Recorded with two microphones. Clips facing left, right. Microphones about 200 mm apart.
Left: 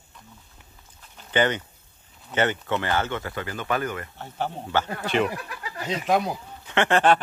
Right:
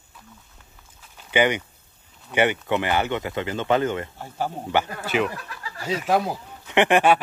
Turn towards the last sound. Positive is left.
turn(degrees=-15)  # may be behind; listen again after turning